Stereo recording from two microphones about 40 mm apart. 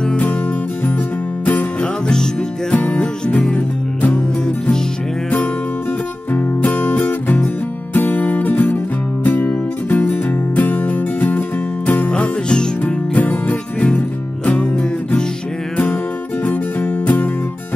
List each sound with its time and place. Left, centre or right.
1.4 s music: left
1.8 s music: left
2.7 s music: left
6.3 s music: left
12.1 s music: left
12.8 s music: left
14.4 s music: left
16.4 s music: left